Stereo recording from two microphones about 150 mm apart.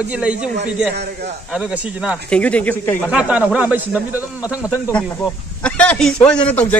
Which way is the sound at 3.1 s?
10° right (ahead or behind).